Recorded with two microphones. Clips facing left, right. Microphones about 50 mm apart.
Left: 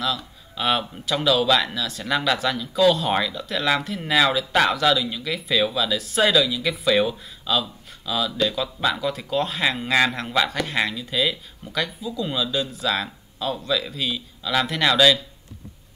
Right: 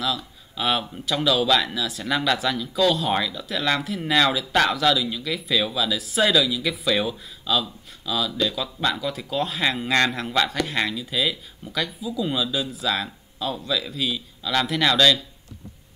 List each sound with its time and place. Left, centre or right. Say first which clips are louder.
0.0 s speech: left 1 dB; centre